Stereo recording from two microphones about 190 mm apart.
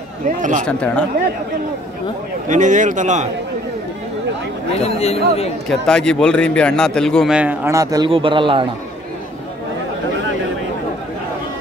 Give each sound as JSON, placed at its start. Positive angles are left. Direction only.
{"t": 0.4, "sound": "a man's voice", "side_deg": -40}
{"t": 0.7, "sound": "a man's voice", "side_deg": 5}
{"t": 2.4, "sound": "a man's voice", "side_deg": -40}
{"t": 4.7, "sound": "speech", "side_deg": 35}
{"t": 5.7, "sound": "a man's voice", "side_deg": 5}